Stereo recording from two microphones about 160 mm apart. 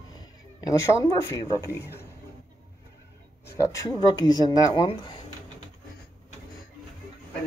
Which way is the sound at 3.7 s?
20° left (ahead or behind).